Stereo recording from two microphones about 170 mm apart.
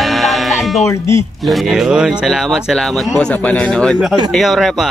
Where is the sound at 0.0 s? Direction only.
Centre (ahead or behind).